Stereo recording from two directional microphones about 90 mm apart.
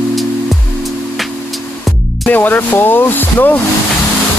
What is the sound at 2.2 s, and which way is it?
Speech, 20° left (ahead or behind).